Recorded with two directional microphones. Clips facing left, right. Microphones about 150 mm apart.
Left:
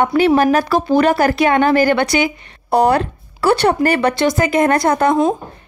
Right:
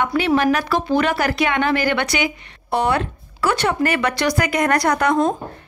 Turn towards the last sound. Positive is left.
turn(degrees=25)  # may be behind; listen again after turning